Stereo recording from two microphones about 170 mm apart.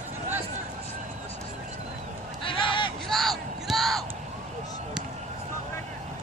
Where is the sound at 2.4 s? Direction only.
30° left (ahead or behind).